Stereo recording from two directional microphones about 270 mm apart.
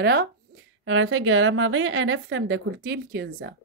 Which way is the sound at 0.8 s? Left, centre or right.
Right.